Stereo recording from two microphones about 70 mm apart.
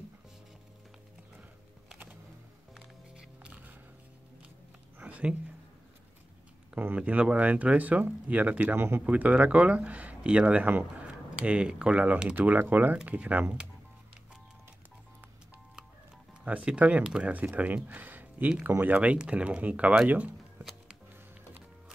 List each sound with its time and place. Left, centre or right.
3.4 s biting: right
4.9 s a sound: right
7.0 s speech: centre
8.7 s speech: right
9.0 s speech: centre
16.4 s speech: centre
17.8 s a sound: right
18.8 s speech: right